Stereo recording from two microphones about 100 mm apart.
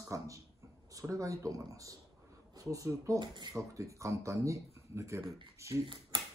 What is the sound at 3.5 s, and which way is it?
Speech, 30° right (ahead or behind).